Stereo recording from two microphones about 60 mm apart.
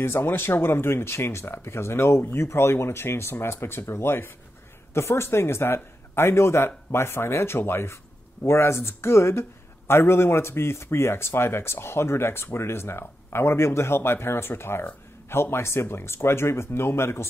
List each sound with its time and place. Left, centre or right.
0.0 s speech: left